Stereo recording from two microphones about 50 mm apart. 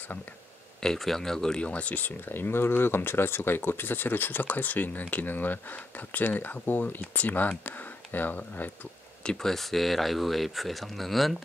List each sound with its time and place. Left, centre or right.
0.8 s speech: centre
1.6 s speech: left
9.2 s speech: centre
9.5 s speech: centre